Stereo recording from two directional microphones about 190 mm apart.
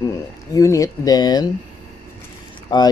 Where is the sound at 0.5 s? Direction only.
15° left (ahead or behind).